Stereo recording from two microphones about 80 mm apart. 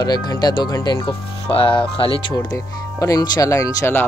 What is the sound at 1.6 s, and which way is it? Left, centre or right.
Speech, left.